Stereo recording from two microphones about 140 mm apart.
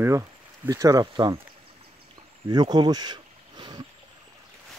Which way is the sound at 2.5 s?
30° right (ahead or behind).